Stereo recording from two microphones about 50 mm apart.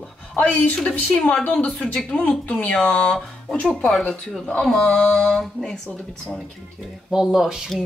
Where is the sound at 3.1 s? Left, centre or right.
Centre.